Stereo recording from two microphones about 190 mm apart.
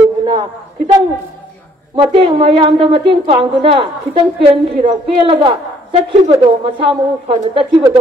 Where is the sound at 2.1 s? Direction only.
30° right (ahead or behind).